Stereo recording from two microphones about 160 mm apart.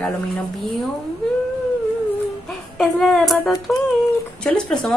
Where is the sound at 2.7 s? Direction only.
5° left (ahead or behind).